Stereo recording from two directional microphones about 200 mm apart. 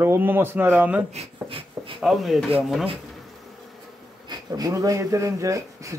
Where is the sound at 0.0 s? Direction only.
10° right (ahead or behind).